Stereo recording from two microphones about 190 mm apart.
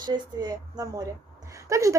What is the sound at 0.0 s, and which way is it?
A woman's voice, 20° right (ahead or behind).